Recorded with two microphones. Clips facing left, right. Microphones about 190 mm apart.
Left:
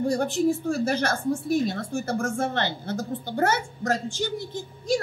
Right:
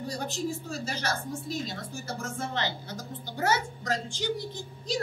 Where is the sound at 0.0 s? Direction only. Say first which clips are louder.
Left 10 dB; 55° left (ahead or behind).